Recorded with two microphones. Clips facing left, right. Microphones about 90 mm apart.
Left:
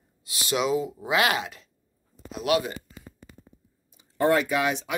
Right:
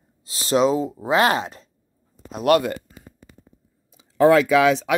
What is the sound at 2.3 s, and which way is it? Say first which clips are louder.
Speech: right 7 dB; 50° right (ahead or behind).